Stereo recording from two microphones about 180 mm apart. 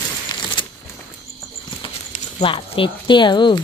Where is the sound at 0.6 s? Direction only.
25° left (ahead or behind).